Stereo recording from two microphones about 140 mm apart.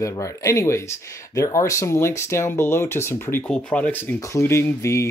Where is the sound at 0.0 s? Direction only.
25° left (ahead or behind).